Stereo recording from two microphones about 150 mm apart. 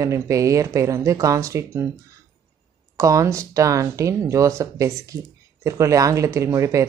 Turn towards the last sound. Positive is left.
turn(degrees=-20)  # may be behind; listen again after turning